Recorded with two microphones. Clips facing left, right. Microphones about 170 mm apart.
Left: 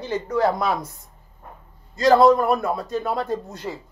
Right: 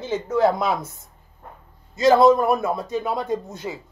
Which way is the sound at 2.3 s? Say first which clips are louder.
Even; centre (ahead or behind).